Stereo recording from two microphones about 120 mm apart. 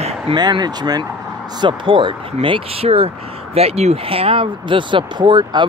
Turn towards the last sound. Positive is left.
turn(degrees=-40)  # may be behind; listen again after turning